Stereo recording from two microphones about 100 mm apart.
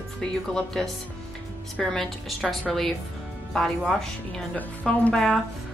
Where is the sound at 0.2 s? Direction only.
5° left (ahead or behind).